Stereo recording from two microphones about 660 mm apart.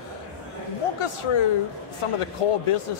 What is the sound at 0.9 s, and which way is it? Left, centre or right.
Speech, left.